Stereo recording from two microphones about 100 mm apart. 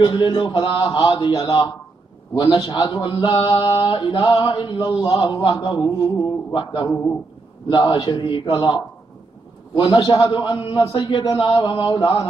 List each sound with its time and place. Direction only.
0.0 s speech: 50° left (ahead or behind)
5.9 s speech: 35° left (ahead or behind); by 6.9 s 55° left (ahead or behind)
6.9 s speech: 30° left (ahead or behind)
7.7 s speech: 45° left (ahead or behind)
8.5 s speech: 45° left (ahead or behind)